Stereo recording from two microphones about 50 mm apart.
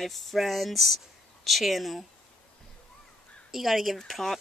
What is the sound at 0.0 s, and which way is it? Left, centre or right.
Speech, centre.